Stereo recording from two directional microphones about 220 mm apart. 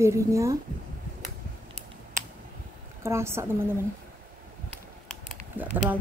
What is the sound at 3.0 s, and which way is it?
Speech, 10° right (ahead or behind).